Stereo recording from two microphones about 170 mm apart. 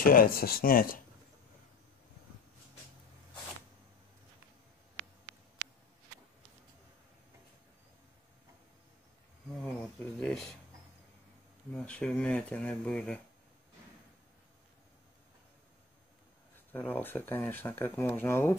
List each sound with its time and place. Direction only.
0.0 s speech: 60° left (ahead or behind)
9.6 s speech: 5° left (ahead or behind)
11.7 s speech: 5° left (ahead or behind)
16.7 s speech: 10° left (ahead or behind)